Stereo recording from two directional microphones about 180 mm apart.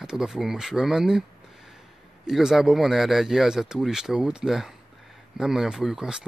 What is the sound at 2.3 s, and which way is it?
Speech, centre (ahead or behind).